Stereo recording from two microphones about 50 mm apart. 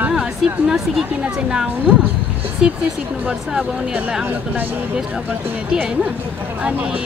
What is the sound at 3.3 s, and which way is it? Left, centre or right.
Speech, right.